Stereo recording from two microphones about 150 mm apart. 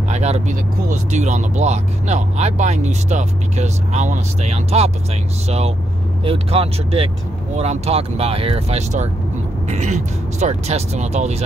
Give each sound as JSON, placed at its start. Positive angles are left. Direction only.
{"t": 0.1, "sound": "speech", "side_deg": -50}
{"t": 6.2, "sound": "speech", "side_deg": -40}